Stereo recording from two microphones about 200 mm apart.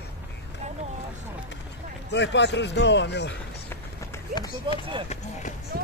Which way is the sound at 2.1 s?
60° left (ahead or behind).